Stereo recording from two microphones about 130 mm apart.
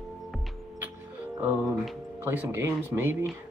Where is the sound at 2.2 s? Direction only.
20° right (ahead or behind).